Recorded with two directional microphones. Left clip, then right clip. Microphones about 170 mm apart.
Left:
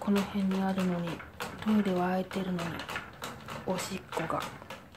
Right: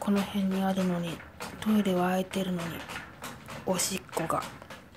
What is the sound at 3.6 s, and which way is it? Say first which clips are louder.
Speech: right 5 dB; 10° right (ahead or behind).